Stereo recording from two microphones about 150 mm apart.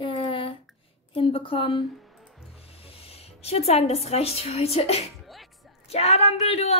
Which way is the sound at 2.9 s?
40° left (ahead or behind).